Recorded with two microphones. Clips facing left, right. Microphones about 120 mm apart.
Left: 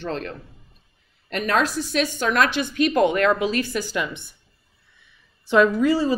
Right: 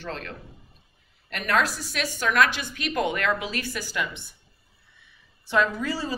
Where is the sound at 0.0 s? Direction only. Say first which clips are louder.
Left 6 dB; 25° left (ahead or behind).